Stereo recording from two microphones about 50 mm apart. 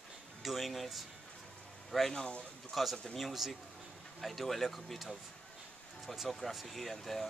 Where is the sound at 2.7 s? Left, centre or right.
Centre.